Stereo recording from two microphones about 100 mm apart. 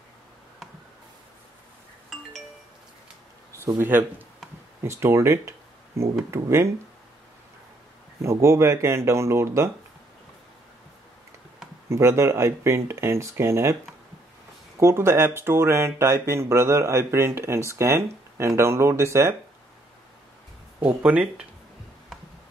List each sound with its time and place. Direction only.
3.6 s speech: 20° right (ahead or behind)
8.2 s speech: 30° right (ahead or behind)
11.9 s speech: 25° right (ahead or behind)
14.8 s speech: 30° right (ahead or behind)
20.8 s speech: 15° right (ahead or behind)